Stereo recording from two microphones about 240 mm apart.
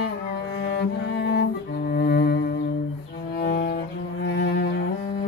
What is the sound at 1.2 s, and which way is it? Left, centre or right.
Cello, left.